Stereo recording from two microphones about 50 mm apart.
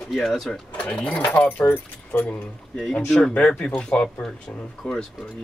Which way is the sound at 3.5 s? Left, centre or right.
Centre.